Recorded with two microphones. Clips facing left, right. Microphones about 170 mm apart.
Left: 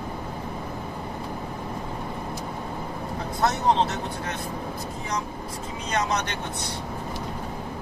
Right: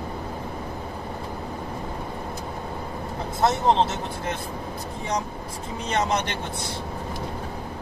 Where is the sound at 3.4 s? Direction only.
25° right (ahead or behind).